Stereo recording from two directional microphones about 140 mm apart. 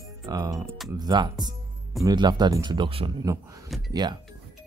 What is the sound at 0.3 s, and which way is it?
Speech, 25° right (ahead or behind).